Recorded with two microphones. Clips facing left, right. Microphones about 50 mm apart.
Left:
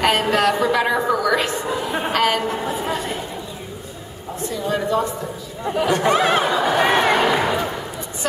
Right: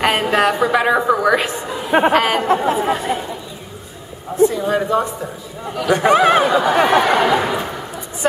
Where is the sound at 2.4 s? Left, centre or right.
Right.